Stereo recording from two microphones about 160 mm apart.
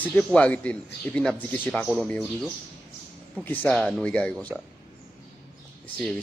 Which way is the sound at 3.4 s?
10° left (ahead or behind).